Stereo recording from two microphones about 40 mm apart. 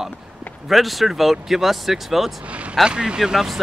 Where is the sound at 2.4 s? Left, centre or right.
Right.